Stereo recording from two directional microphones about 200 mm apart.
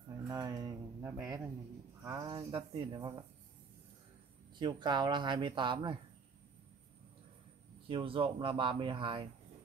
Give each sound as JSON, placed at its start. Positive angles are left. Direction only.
{"t": 0.3, "sound": "a sound", "side_deg": -20}
{"t": 2.0, "sound": "speech", "side_deg": -20}
{"t": 4.6, "sound": "speech", "side_deg": -20}
{"t": 7.9, "sound": "speech", "side_deg": -25}